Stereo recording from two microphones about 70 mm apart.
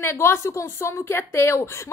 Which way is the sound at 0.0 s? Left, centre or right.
Left.